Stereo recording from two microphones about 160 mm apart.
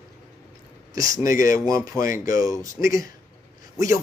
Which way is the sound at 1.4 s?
20° right (ahead or behind).